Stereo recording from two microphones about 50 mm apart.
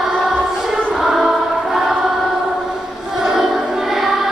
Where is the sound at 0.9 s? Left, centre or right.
Centre.